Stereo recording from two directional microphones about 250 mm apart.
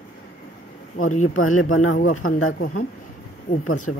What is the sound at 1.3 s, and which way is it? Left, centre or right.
Speech, left.